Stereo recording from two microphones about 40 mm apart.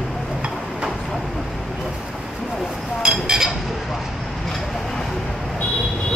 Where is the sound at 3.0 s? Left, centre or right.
Centre.